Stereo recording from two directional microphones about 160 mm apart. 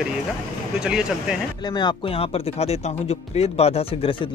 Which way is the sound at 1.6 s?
25° left (ahead or behind).